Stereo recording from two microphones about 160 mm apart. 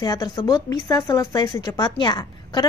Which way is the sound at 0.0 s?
25° left (ahead or behind).